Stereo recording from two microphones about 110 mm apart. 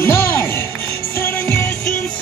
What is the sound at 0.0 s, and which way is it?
Music, 20° left (ahead or behind).